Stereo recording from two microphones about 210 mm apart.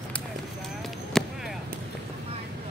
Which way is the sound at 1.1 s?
Centre (ahead or behind).